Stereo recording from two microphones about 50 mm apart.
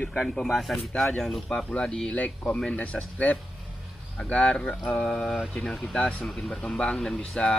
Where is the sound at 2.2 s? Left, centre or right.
Left; by 5.9 s centre.